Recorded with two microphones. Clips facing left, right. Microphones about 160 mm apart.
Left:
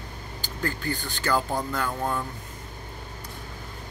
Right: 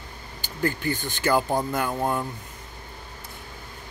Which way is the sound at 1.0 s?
20° right (ahead or behind).